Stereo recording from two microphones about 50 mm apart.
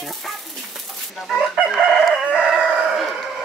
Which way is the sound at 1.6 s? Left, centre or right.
Centre.